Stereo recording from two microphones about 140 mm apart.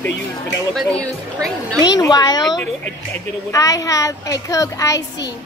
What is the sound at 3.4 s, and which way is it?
A child's voice, 25° left (ahead or behind).